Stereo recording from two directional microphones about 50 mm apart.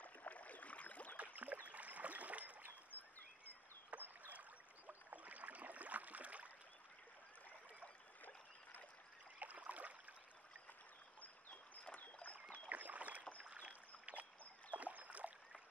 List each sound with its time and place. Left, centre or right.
0.0 s boat: left
1.1 s rowboat: right
3.9 s rowboat: right
9.4 s a sound: right
11.9 s rowboat: left
12.5 s rowboat: right